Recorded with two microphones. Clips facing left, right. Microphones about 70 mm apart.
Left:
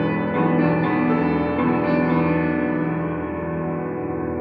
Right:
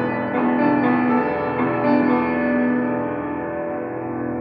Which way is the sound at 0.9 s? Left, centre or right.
Centre.